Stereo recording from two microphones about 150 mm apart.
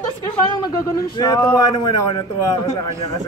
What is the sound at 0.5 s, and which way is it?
Speech, 25° left (ahead or behind).